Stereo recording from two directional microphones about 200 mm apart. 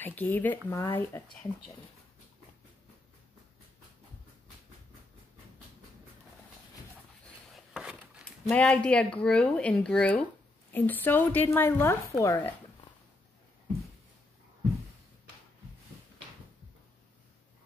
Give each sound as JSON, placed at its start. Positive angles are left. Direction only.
{"t": 0.0, "sound": "a woman's voice", "side_deg": 10}
{"t": 0.7, "sound": "a woman's voice", "side_deg": 20}
{"t": 7.2, "sound": "a sound", "side_deg": 0}
{"t": 8.5, "sound": "a woman's voice", "side_deg": 5}